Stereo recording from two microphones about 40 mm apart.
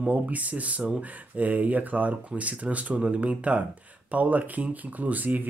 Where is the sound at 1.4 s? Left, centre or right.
Right.